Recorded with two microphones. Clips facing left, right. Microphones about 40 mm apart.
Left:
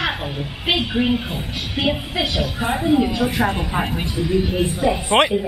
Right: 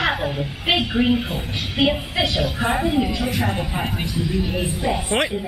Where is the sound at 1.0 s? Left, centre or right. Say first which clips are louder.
Right 1 dB; centre.